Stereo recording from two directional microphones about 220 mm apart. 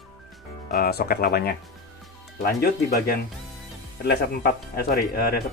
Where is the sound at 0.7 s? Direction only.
45° left (ahead or behind).